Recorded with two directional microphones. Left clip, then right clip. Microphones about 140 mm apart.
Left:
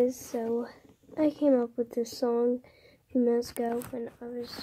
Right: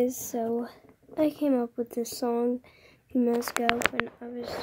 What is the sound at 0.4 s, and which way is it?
Speech, 15° right (ahead or behind).